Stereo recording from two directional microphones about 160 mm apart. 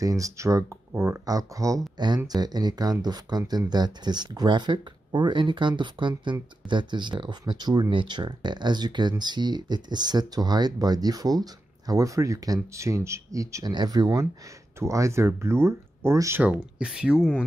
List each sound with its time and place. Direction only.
0.0 s speech: 20° right (ahead or behind); by 17.3 s 5° right (ahead or behind)